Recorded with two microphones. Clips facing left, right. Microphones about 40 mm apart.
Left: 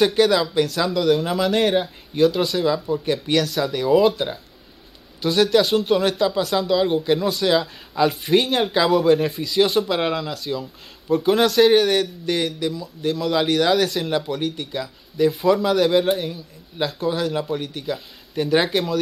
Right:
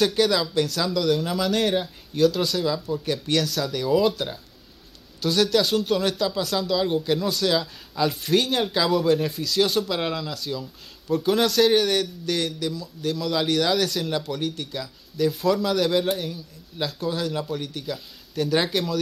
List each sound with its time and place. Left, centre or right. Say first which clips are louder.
0.0 s speech: left 4 dB; centre